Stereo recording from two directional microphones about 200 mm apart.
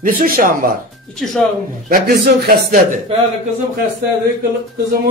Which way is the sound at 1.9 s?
45° right (ahead or behind).